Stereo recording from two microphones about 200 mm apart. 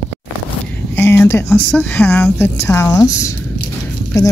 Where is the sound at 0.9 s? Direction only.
10° left (ahead or behind).